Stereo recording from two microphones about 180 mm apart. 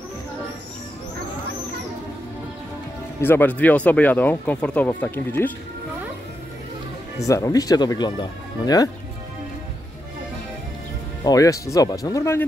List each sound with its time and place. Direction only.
3.2 s speech: 10° left (ahead or behind)
7.2 s speech: 20° left (ahead or behind)
11.2 s speech: 20° left (ahead or behind)